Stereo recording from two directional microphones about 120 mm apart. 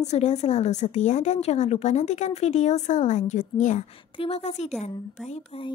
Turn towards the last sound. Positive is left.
turn(degrees=70)  # may be behind; listen again after turning